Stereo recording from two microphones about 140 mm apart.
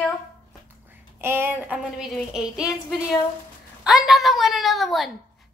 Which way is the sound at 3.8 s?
Centre (ahead or behind).